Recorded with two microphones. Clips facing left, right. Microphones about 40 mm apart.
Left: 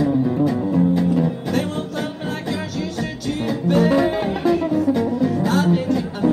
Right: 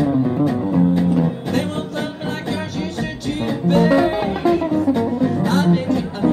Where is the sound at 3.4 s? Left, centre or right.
Right.